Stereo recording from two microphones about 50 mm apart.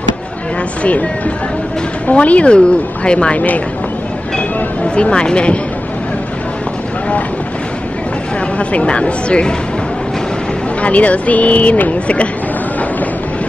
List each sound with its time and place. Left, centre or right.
0.8 s speech: left
3.3 s speech: left
4.4 s a sound: left
8.5 s speech: left
10.8 s speech: left